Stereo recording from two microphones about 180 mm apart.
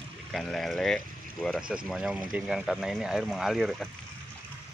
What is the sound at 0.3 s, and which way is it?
Speech, centre (ahead or behind).